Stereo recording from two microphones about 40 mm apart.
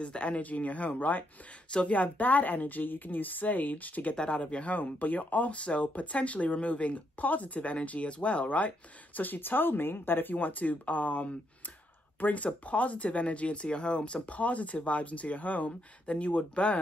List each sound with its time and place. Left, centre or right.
0.0 s a woman's voice: left
4.2 s speech: left
4.7 s speech: left